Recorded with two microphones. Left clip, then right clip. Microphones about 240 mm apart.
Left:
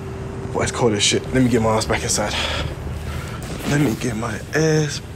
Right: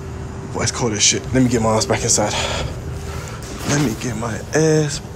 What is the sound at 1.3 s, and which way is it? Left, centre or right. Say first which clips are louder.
Speech: right 1 dB; centre.